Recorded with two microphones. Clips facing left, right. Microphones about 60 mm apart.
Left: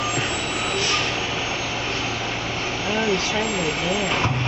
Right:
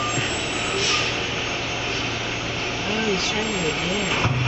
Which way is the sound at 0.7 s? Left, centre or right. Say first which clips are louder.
Even; centre.